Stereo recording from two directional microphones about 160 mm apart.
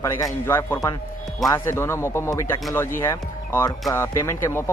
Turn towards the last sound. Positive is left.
turn(degrees=15)  # may be behind; listen again after turning